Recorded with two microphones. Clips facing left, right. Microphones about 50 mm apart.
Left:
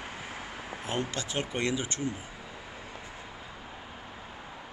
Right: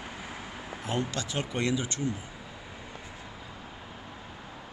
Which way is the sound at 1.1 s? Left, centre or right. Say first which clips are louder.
Even; left.